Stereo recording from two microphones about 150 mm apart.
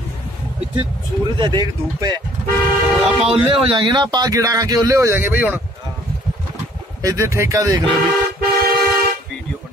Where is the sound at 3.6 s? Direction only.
30° right (ahead or behind); by 5.6 s 10° right (ahead or behind).